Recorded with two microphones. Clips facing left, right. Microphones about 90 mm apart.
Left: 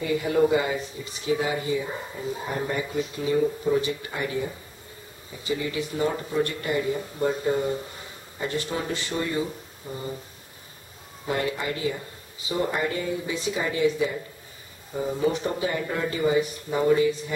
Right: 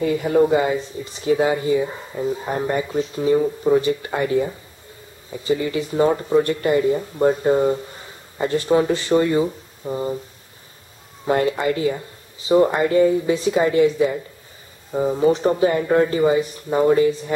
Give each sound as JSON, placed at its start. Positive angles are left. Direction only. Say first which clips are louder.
{"t": 0.3, "sound": "speech", "louder": "right 5 dB", "side_deg": -40}
{"t": 5.5, "sound": "speech", "louder": "right 7 dB", "side_deg": -40}
{"t": 11.2, "sound": "speech", "louder": "right 8 dB", "side_deg": -50}
{"t": 12.4, "sound": "speech", "louder": "right 10 dB", "side_deg": -35}